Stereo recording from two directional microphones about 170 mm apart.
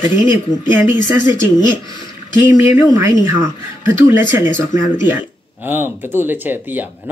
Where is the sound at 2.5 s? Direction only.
15° right (ahead or behind).